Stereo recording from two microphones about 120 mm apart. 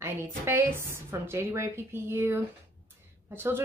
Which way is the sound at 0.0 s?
20° right (ahead or behind).